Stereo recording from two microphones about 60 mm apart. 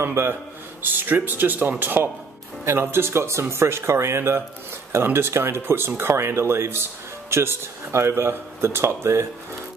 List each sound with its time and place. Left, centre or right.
0.0 s speech: right